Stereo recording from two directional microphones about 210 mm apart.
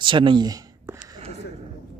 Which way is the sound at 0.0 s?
25° right (ahead or behind).